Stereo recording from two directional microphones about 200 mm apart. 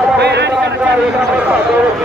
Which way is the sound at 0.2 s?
55° right (ahead or behind).